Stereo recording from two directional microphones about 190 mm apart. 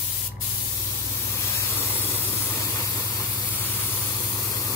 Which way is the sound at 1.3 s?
15° left (ahead or behind).